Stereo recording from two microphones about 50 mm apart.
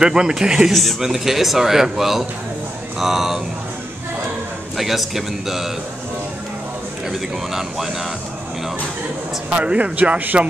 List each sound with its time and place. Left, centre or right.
0.0 s speech: centre
0.7 s speech: centre
4.7 s speech: centre
7.1 s speech: centre
9.5 s a man's voice: right